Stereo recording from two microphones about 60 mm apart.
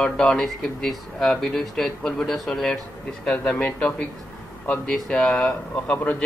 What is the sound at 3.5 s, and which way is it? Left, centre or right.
Speech, centre.